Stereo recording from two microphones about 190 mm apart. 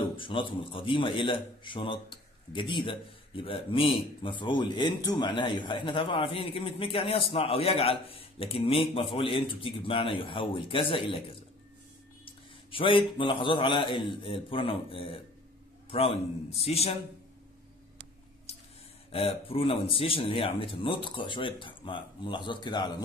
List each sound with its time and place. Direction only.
0.2 s a man's voice: 25° left (ahead or behind)
12.3 s a man's voice: 25° left (ahead or behind)
18.5 s squish: 35° left (ahead or behind)
19.1 s a man's voice: 30° left (ahead or behind)